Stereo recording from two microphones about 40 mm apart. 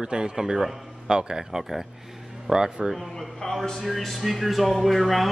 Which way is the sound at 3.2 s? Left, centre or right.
Centre.